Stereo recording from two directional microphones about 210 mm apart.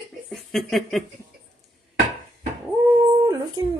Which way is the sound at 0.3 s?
Centre (ahead or behind).